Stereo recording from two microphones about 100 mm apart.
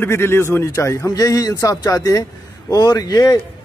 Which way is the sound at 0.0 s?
25° left (ahead or behind).